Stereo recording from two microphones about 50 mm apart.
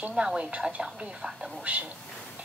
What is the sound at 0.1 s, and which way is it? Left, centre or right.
A woman's voice, centre.